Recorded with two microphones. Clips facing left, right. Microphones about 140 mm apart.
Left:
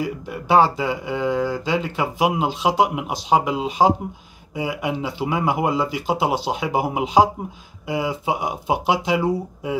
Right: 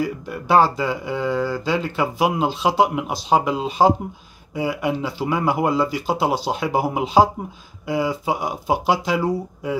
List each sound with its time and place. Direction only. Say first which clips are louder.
0.0 s speech: right 2 dB; 15° left (ahead or behind)
9.1 s speech: left 1 dB; centre (ahead or behind)